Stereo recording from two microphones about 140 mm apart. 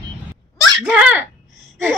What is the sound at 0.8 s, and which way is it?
Speech, 5° right (ahead or behind).